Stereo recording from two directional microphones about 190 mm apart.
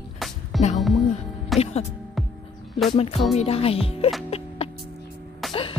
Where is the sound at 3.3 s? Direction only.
30° left (ahead or behind).